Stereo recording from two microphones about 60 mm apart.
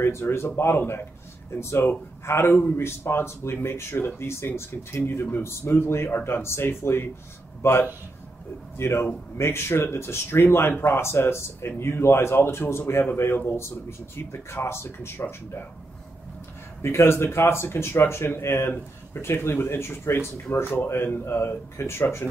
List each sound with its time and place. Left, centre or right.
0.0 s speech: left
3.9 s speech: left
4.6 s speech: left
16.8 s speech: left